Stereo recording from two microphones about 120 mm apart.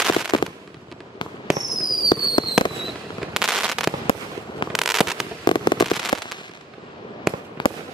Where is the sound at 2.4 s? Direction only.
35° left (ahead or behind).